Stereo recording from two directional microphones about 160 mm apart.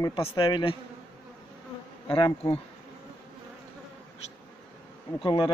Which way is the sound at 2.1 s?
35° left (ahead or behind).